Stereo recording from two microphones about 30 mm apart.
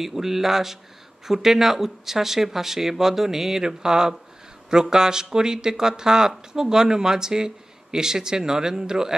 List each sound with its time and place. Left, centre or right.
0.0 s speech: centre